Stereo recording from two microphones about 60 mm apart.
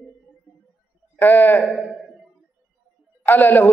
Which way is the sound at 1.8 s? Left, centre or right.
Centre.